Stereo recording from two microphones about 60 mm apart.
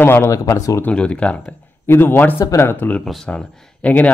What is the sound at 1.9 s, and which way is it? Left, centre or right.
A man's voice, left.